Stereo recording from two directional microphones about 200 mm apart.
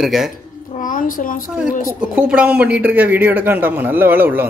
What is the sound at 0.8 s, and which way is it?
Speech, 40° left (ahead or behind).